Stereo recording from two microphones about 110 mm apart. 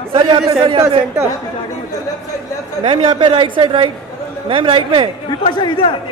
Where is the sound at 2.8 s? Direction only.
60° right (ahead or behind).